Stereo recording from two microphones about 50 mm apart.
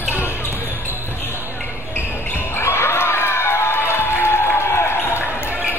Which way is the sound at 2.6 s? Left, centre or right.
Left.